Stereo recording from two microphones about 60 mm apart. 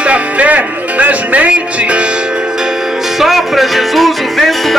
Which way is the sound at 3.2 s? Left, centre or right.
Centre.